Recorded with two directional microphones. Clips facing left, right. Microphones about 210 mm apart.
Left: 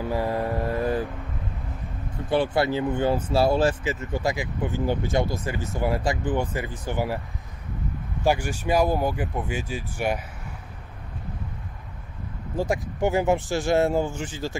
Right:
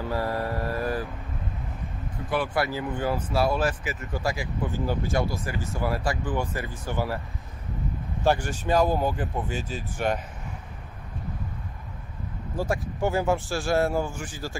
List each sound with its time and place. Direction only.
0.1 s mantra: 15° left (ahead or behind)
2.2 s speech: 30° left (ahead or behind)
8.2 s speech: 10° left (ahead or behind)
12.5 s speech: 15° left (ahead or behind)